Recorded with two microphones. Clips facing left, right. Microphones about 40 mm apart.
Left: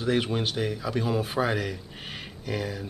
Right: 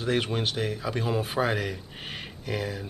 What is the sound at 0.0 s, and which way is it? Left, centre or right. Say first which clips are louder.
Speech: left 1 dB; centre.